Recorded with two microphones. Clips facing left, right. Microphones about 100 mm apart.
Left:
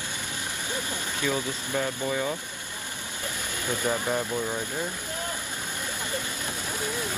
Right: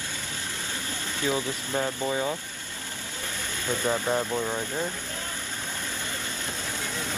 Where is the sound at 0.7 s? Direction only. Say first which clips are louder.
Left 2 dB; 15° left (ahead or behind).